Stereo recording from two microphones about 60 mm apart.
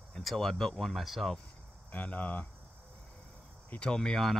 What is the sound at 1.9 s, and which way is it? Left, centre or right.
Speech, left.